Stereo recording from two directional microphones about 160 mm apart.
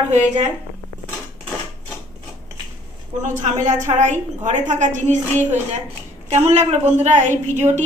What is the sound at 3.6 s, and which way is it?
A woman's voice, 50° right (ahead or behind).